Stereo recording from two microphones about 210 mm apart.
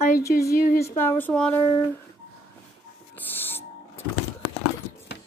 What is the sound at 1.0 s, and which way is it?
Speech, 10° left (ahead or behind).